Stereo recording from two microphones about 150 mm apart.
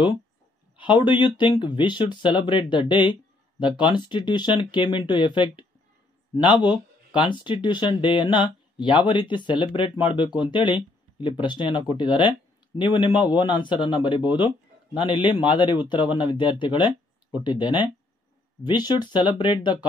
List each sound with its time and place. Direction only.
0.7 s speech: 30° left (ahead or behind)